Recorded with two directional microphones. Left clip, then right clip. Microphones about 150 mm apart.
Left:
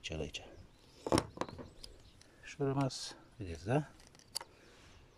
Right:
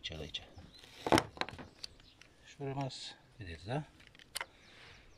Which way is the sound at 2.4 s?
10° left (ahead or behind).